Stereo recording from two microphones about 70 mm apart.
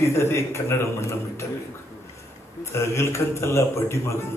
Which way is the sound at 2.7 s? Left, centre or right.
Left.